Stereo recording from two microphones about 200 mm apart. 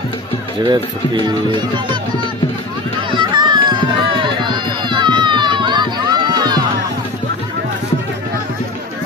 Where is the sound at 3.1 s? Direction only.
25° right (ahead or behind).